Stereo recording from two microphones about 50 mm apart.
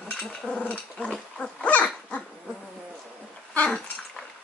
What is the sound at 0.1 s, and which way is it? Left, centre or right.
Dog, centre.